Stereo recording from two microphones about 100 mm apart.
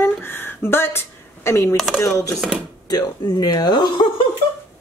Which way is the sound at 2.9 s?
45° left (ahead or behind).